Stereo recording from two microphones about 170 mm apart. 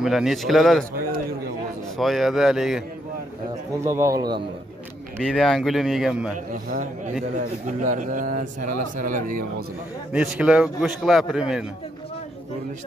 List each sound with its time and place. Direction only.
0.0 s a man's voice: centre (ahead or behind)
2.0 s a man's voice: centre (ahead or behind)
3.8 s a man's voice: 15° right (ahead or behind)
5.2 s a man's voice: 5° left (ahead or behind)
6.3 s speech: 50° right (ahead or behind)
10.1 s a man's voice: 5° right (ahead or behind)